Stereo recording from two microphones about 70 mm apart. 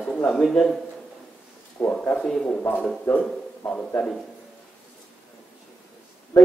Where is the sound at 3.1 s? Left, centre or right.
Centre.